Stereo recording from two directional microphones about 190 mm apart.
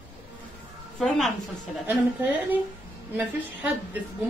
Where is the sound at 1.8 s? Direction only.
10° right (ahead or behind).